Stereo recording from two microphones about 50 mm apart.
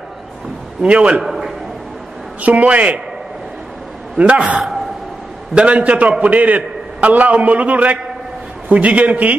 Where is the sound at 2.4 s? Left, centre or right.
Right.